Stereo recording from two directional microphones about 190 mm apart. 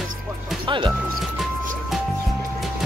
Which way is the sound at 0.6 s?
25° right (ahead or behind).